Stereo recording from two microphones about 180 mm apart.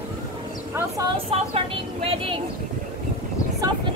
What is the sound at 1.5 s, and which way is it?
Vehicle, 30° right (ahead or behind).